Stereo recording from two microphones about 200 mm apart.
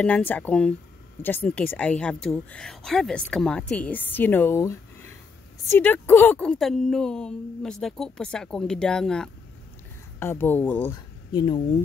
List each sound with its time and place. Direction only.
0.0 s a woman's voice: 5° left (ahead or behind)